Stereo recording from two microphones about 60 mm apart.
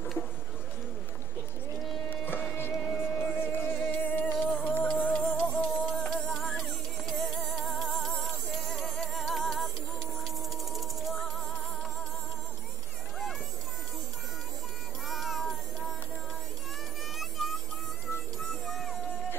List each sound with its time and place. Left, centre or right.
2.0 s music: left
4.4 s music: centre
6.0 s music: centre
15.0 s music: centre
17.2 s music: centre